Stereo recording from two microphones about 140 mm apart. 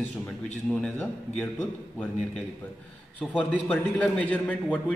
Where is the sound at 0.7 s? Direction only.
5° left (ahead or behind).